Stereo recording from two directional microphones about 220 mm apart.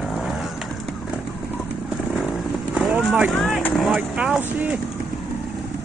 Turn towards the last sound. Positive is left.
turn(degrees=-5)  # may be behind; listen again after turning